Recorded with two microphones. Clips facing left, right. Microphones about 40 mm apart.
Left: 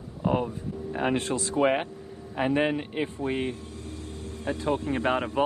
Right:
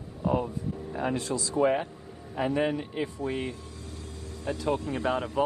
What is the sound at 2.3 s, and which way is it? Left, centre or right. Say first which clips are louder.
Speech: left 2 dB; left.